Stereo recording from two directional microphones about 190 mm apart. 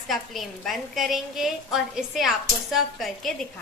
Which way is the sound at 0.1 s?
Centre (ahead or behind).